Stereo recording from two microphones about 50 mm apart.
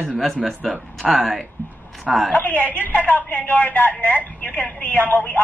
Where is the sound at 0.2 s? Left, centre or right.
Centre.